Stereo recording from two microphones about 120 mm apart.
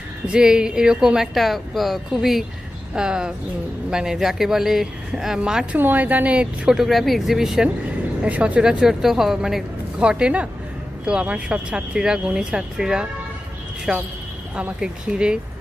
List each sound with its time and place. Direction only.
0.3 s speech: 5° right (ahead or behind)